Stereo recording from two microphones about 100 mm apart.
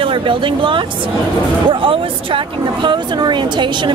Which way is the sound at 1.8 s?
60° right (ahead or behind).